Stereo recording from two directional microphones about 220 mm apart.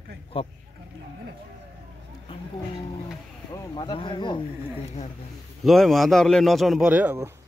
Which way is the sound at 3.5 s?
20° left (ahead or behind).